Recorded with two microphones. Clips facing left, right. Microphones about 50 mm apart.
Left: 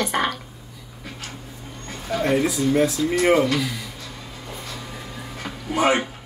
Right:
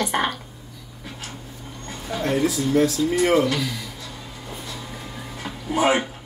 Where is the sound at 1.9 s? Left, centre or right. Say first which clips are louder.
Left 3 dB; centre.